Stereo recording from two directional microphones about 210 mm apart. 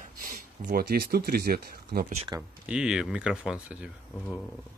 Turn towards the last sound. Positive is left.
turn(degrees=-5)  # may be behind; listen again after turning